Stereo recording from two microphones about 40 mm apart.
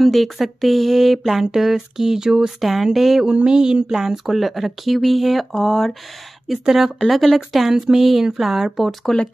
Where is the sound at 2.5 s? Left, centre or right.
Centre.